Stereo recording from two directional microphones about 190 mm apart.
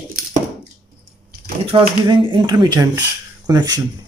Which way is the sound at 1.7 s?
25° right (ahead or behind).